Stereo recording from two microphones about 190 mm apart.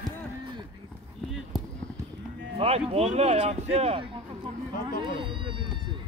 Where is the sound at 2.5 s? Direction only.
30° right (ahead or behind).